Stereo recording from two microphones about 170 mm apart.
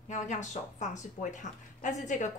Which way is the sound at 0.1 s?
45° left (ahead or behind).